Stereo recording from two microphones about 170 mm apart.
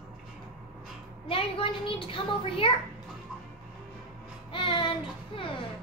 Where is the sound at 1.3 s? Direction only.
30° left (ahead or behind).